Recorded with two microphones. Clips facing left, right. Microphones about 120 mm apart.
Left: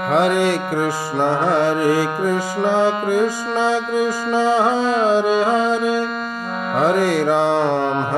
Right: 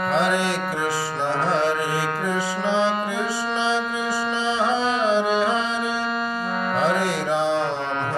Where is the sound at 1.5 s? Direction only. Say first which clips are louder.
Left 6 dB; 50° left (ahead or behind).